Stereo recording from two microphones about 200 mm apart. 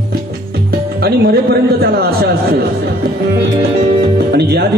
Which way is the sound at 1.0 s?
50° right (ahead or behind).